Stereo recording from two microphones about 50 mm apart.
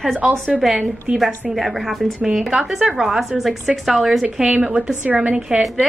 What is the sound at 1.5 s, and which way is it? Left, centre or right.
A woman's voice, centre.